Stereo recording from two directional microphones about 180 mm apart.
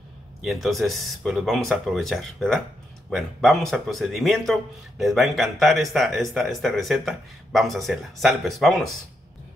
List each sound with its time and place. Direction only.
0.4 s speech: centre (ahead or behind)